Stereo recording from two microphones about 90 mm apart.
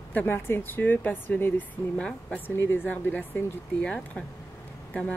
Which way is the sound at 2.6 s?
20° left (ahead or behind).